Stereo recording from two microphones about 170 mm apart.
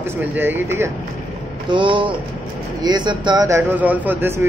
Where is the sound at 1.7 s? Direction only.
30° right (ahead or behind).